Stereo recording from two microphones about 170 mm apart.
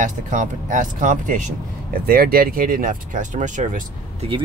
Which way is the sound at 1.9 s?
60° right (ahead or behind).